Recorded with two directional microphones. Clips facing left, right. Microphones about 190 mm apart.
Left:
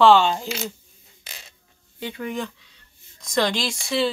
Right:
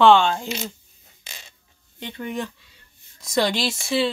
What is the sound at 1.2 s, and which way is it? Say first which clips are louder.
Fart: even; 5° left (ahead or behind).